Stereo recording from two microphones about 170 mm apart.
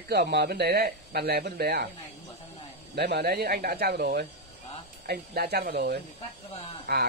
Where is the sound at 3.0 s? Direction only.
70° right (ahead or behind).